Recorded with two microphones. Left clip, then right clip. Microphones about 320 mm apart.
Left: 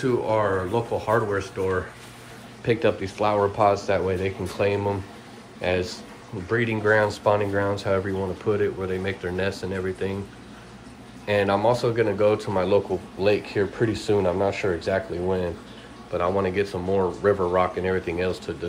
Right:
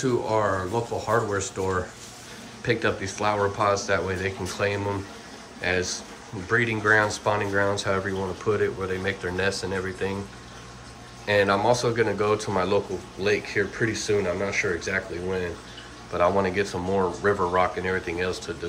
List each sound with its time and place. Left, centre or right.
0.0 s speech: centre
11.2 s speech: centre
13.3 s speech: left
13.7 s speech: centre
16.1 s speech: centre